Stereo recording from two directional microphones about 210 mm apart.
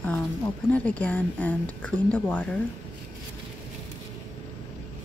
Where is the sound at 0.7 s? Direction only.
5° left (ahead or behind).